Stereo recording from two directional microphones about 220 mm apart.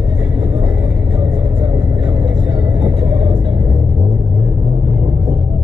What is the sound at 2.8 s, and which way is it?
Vehicle, 20° right (ahead or behind).